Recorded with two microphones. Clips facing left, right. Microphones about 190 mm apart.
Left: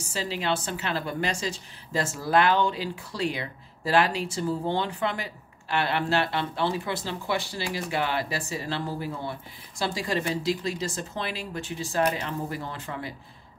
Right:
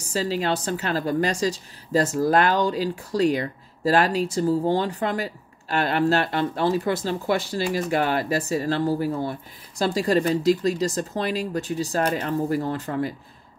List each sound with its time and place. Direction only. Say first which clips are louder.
0.1 s a woman's voice: right 5 dB; 40° right (ahead or behind)